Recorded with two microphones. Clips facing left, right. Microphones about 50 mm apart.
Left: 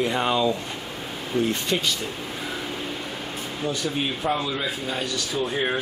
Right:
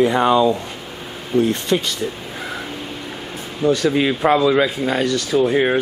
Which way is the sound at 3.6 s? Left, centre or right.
Right.